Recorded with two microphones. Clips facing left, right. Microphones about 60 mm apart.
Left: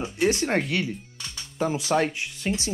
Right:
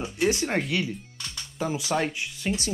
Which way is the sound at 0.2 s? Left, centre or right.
Left.